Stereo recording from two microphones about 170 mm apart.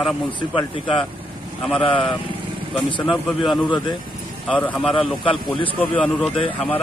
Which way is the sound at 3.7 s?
25° left (ahead or behind).